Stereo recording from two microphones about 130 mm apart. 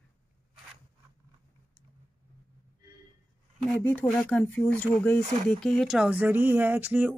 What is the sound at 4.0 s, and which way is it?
Speech, 10° left (ahead or behind).